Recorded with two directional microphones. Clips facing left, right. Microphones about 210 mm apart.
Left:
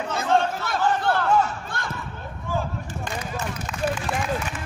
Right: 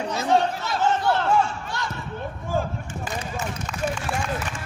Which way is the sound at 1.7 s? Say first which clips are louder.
Right 4 dB; 55° left (ahead or behind).